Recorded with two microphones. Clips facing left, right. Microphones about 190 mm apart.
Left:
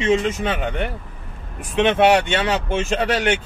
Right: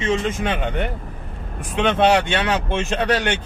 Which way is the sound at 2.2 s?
25° left (ahead or behind).